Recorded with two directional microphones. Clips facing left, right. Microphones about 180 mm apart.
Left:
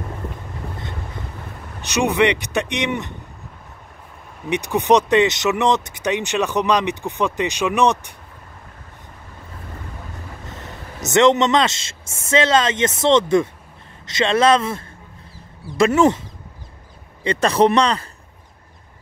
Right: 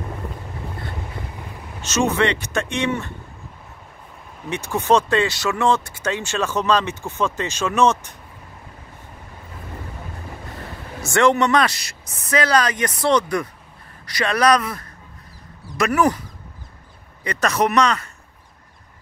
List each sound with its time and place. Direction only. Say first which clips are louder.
1.8 s speech: left 2 dB; 15° left (ahead or behind)
4.5 s speech: left 2 dB; 15° left (ahead or behind)
11.1 s speech: left 2 dB; 20° left (ahead or behind)